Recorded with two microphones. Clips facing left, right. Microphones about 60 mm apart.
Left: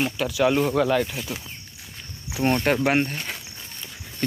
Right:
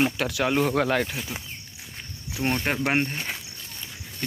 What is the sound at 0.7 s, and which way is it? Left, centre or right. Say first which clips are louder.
Speech: left 2 dB; right.